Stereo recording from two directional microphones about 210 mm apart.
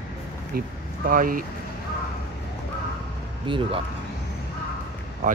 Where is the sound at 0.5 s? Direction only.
40° right (ahead or behind).